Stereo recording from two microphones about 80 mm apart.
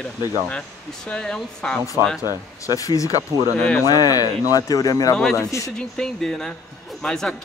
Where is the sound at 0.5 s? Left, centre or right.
Centre.